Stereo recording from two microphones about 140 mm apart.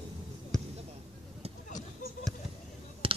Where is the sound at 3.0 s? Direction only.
40° right (ahead or behind).